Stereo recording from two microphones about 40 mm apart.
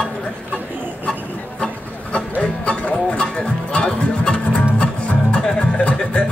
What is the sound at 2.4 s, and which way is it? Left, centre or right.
Music, left.